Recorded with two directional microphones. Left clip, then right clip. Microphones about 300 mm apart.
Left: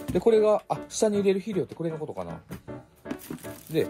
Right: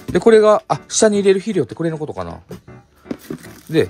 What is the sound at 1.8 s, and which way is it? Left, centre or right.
Speech, right.